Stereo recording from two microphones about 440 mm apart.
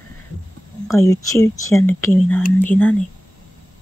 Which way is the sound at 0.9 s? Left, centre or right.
Centre.